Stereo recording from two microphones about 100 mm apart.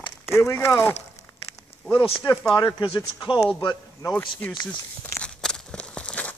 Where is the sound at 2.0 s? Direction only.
60° left (ahead or behind).